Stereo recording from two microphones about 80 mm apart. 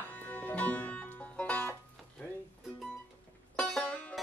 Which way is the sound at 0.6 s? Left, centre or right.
Centre.